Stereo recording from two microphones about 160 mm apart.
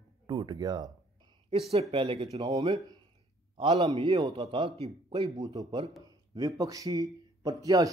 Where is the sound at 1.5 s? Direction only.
40° right (ahead or behind).